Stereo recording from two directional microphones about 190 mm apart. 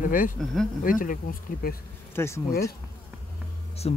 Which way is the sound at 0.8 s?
45° left (ahead or behind).